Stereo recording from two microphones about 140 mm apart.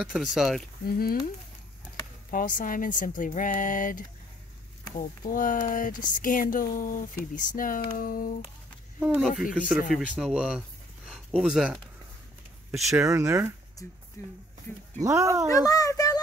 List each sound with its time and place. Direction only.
0.0 s speech: 5° right (ahead or behind)
0.8 s speech: 90° left
2.3 s speech: 75° left (ahead or behind)
5.2 s speech: 75° left (ahead or behind)
9.0 s speech: 5° right (ahead or behind)
12.9 s speech: 20° right (ahead or behind)
14.2 s speech: 20° left (ahead or behind)
15.0 s speech: 20° right (ahead or behind)
15.5 s speech: 25° left (ahead or behind)